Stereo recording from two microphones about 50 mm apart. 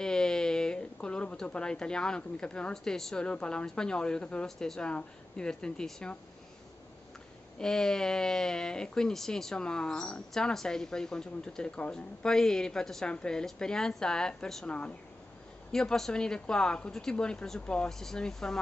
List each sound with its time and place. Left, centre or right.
0.0 s speech: centre
4.5 s speech: centre
7.5 s speech: centre
10.3 s speech: centre
15.7 s speech: centre
17.8 s speech: centre